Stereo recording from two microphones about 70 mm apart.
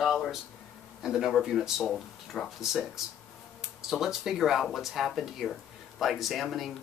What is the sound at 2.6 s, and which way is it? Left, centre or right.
Speech, centre.